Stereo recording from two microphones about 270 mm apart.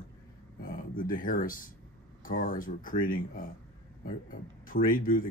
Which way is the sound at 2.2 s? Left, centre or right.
Left.